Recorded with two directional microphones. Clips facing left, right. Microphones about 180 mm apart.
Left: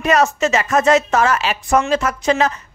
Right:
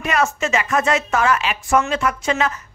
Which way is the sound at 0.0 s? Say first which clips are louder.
Left 5 dB; 40° left (ahead or behind).